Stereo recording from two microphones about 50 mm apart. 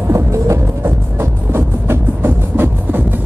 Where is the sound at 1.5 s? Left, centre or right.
Right.